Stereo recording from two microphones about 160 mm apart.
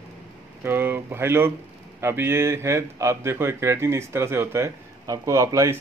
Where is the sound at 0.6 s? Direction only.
15° right (ahead or behind).